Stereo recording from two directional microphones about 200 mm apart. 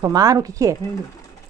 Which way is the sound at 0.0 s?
20° right (ahead or behind).